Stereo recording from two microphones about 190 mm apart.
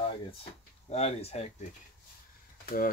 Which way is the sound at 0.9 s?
35° left (ahead or behind).